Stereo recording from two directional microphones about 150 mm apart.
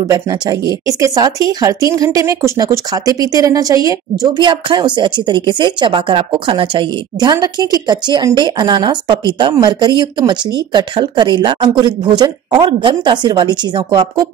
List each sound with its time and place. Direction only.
0.1 s speech: 25° right (ahead or behind)